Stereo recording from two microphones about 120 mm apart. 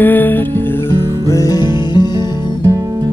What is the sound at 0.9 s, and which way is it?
Music, 30° left (ahead or behind).